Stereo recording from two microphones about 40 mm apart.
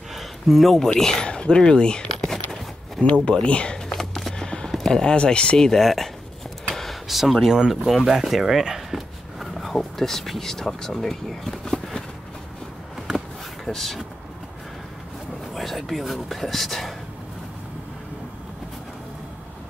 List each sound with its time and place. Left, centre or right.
0.1 s a sound: centre
0.9 s speech: centre
1.2 s speech: left
3.3 s a sound: left; by 5.1 s centre
5.1 s speech: left
5.6 s speech: centre
6.7 s a sound: centre
7.7 s speech: centre
13.7 s speech: centre
15.5 s speech: centre